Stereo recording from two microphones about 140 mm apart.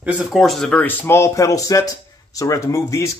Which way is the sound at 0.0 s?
Centre (ahead or behind).